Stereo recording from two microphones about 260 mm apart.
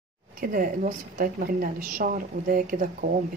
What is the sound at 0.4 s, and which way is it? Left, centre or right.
A woman's voice, right.